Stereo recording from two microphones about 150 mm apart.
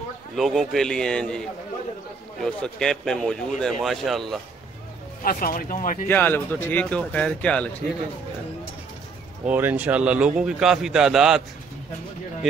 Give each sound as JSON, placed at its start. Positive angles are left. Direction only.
{"t": 0.4, "sound": "speech", "side_deg": 0}
{"t": 2.4, "sound": "speech", "side_deg": 5}
{"t": 5.2, "sound": "speech", "side_deg": 70}
{"t": 6.0, "sound": "speech", "side_deg": 15}
{"t": 9.4, "sound": "a man's voice", "side_deg": -10}